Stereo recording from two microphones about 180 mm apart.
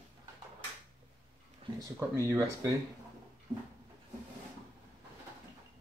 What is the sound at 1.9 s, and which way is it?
Speech, 15° right (ahead or behind).